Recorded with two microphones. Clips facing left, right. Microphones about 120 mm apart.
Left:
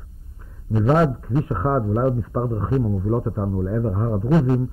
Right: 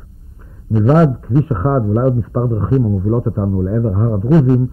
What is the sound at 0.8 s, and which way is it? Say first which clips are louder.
A man's voice: right 6 dB; 30° right (ahead or behind).